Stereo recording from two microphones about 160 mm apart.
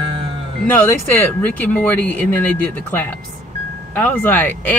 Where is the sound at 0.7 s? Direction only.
10° left (ahead or behind).